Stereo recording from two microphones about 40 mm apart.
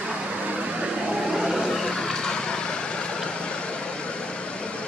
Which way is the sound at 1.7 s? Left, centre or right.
Centre.